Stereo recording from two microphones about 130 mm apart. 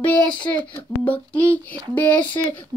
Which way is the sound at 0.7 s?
10° left (ahead or behind).